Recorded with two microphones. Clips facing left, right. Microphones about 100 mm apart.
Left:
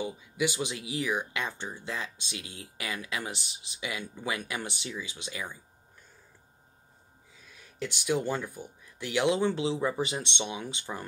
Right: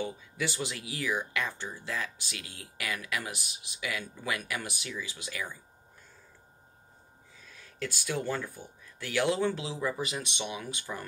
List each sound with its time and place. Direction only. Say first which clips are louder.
0.0 s speech: left 3 dB; 15° left (ahead or behind)
7.8 s speech: left 4 dB; 20° left (ahead or behind)